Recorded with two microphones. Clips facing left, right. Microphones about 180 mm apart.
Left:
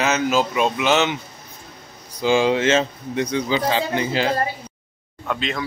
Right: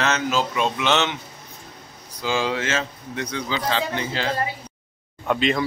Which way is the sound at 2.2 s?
15° left (ahead or behind).